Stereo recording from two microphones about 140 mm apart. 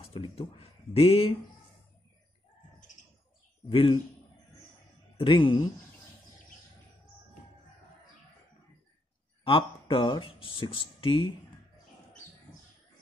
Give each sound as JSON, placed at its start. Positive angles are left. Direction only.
{"t": 0.1, "sound": "speech", "side_deg": 40}
{"t": 3.6, "sound": "speech", "side_deg": 40}
{"t": 5.1, "sound": "speech", "side_deg": 35}
{"t": 9.4, "sound": "speech", "side_deg": 40}